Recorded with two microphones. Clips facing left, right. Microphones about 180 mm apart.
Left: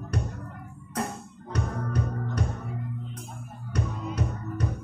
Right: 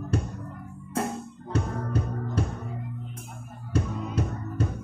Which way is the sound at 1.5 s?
25° right (ahead or behind).